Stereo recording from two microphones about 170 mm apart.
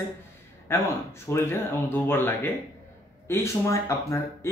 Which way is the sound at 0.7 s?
15° left (ahead or behind).